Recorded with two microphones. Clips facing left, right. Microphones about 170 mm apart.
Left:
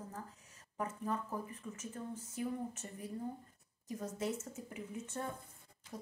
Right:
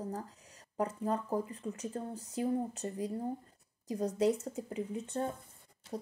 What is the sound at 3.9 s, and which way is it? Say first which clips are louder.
Speech: right 9 dB; 35° right (ahead or behind).